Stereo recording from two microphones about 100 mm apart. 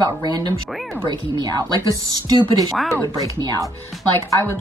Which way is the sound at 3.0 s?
40° right (ahead or behind).